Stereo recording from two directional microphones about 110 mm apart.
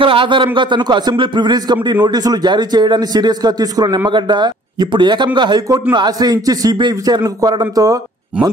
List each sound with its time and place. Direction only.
0.0 s a man's voice: 50° right (ahead or behind); by 8.0 s 35° right (ahead or behind)